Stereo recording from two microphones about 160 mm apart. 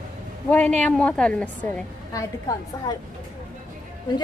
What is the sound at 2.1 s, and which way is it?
Speech, 25° left (ahead or behind).